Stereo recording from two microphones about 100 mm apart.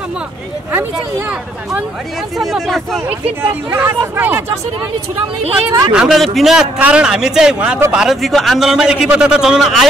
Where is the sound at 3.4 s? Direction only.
25° right (ahead or behind).